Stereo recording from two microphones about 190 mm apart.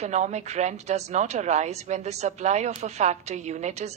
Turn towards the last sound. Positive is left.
turn(degrees=-35)  # may be behind; listen again after turning